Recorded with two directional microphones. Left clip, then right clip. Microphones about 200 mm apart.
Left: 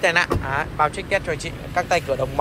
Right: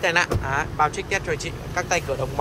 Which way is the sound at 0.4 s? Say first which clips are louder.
Left 1 dB; 10° right (ahead or behind).